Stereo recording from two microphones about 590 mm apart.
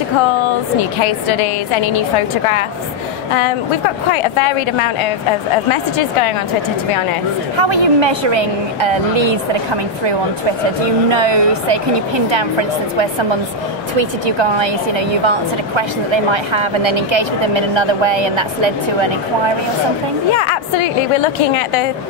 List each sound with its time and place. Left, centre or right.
7.5 s a woman's voice: right
11.1 s a woman's voice: right
13.9 s a woman's voice: right
20.3 s a woman's voice: left